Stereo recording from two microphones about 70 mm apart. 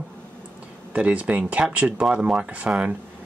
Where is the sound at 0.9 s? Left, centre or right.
Centre.